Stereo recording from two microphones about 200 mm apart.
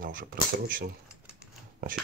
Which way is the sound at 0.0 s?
45° right (ahead or behind).